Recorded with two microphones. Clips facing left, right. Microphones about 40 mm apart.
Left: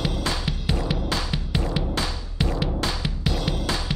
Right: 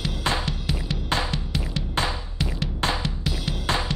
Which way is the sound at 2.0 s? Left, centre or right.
Right.